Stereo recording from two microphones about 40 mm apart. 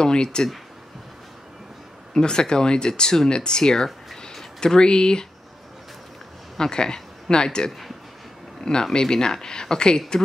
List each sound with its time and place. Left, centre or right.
0.0 s speech: left
2.1 s speech: centre
6.6 s speech: centre
8.9 s speech: centre